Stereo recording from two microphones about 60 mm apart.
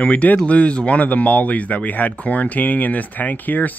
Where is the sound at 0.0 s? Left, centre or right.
Left.